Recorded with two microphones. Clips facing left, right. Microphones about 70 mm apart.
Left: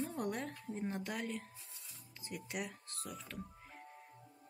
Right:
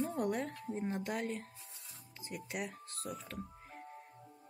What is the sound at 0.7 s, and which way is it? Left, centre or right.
Speech, right.